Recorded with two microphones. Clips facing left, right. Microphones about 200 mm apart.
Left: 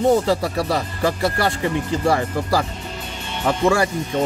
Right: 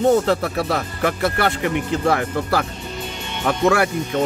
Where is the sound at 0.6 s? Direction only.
Centre (ahead or behind).